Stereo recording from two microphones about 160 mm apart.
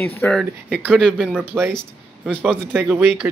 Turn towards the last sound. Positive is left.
turn(degrees=-10)  # may be behind; listen again after turning